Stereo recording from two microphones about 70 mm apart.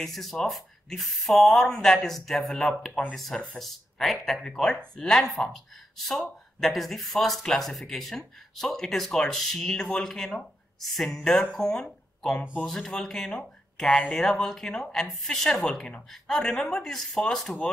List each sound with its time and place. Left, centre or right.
0.0 s speech: centre
2.9 s speech: left
3.2 s speech: centre